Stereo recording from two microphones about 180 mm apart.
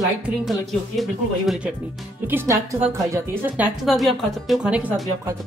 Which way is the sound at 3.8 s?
Centre (ahead or behind).